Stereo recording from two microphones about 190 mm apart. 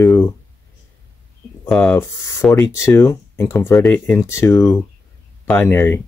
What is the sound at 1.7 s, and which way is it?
Speech, 5° left (ahead or behind).